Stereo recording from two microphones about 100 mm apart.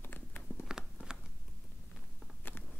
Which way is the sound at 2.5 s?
20° left (ahead or behind).